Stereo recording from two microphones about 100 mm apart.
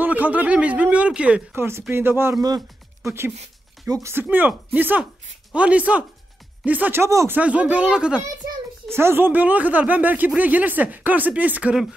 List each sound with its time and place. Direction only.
0.0 s speech: 15° right (ahead or behind)
1.5 s speech: 25° right (ahead or behind)
3.9 s speech: 25° right (ahead or behind)
7.0 s speech: 30° right (ahead or behind)
7.3 s speech: 15° right (ahead or behind)
8.9 s speech: 25° right (ahead or behind)